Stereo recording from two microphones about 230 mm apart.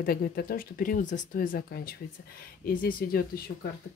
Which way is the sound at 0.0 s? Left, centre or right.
Left.